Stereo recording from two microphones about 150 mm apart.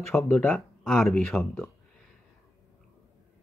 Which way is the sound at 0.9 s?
Centre (ahead or behind).